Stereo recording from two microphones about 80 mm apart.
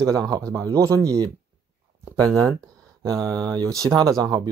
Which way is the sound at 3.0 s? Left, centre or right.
Right.